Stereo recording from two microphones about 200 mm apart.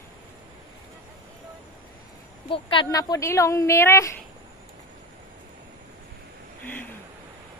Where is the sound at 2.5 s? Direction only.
25° left (ahead or behind).